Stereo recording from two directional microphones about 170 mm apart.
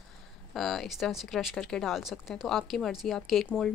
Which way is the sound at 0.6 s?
Centre (ahead or behind).